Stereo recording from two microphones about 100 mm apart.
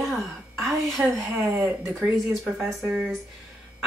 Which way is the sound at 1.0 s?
20° right (ahead or behind).